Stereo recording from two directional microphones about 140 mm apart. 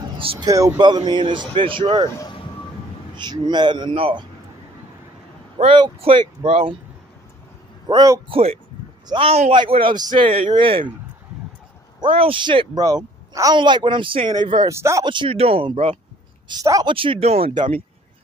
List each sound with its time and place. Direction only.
0.2 s a man's voice: 40° right (ahead or behind)
0.5 s speech: 25° right (ahead or behind)
3.2 s speech: 30° right (ahead or behind)
5.8 s speech: 35° right (ahead or behind)
6.4 s speech: 50° right (ahead or behind)
7.9 s speech: 25° right (ahead or behind)
8.3 s speech: 45° right (ahead or behind)
12.0 s speech: 40° right (ahead or behind)
14.7 s speech: 20° right (ahead or behind)
15.0 s speech: 35° right (ahead or behind)
16.6 s speech: 25° right (ahead or behind)
16.9 s speech: 40° right (ahead or behind)